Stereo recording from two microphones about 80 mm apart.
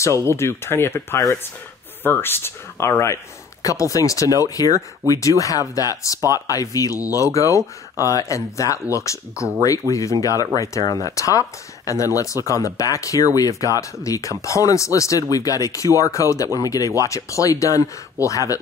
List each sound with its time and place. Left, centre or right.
0.2 s speech: left